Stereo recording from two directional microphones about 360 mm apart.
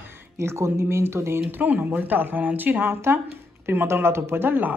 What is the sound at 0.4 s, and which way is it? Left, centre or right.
Speech, centre.